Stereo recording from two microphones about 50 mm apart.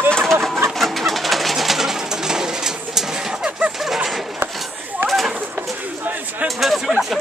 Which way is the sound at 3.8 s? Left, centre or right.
Centre.